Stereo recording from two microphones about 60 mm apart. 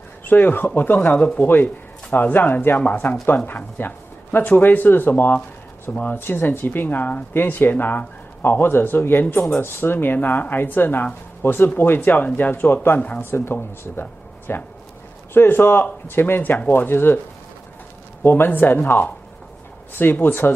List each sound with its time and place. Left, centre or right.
0.2 s speech: left
18.2 s speech: left
19.9 s speech: left